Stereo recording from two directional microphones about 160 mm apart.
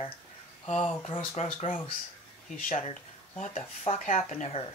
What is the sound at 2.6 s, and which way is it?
Speech, 55° left (ahead or behind).